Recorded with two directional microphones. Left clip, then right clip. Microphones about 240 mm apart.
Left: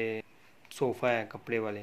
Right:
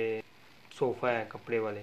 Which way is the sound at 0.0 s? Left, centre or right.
Left.